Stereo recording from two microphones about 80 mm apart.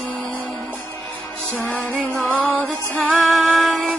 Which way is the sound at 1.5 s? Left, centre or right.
Centre.